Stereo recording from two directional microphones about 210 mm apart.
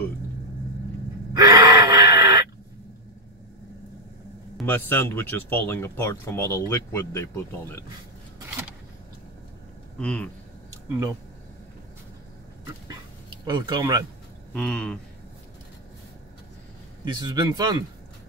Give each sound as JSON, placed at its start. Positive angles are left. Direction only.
{"t": 1.3, "sound": "a sound", "side_deg": -20}
{"t": 4.6, "sound": "speech", "side_deg": 10}
{"t": 9.9, "sound": "speech", "side_deg": 5}
{"t": 12.8, "sound": "dog", "side_deg": -20}
{"t": 14.5, "sound": "speech", "side_deg": 5}
{"t": 17.0, "sound": "speech", "side_deg": -20}